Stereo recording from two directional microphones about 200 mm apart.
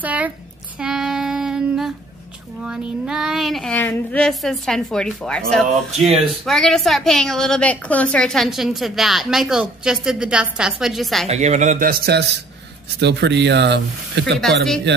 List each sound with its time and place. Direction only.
0.0 s a child's voice: 5° right (ahead or behind)
0.7 s child singing: 5° right (ahead or behind)
2.6 s a woman's voice: 5° right (ahead or behind)
11.2 s a man's voice: 35° right (ahead or behind); by 15.0 s 60° right (ahead or behind)